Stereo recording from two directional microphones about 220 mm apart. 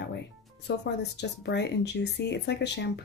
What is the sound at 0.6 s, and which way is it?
Speech, 50° left (ahead or behind).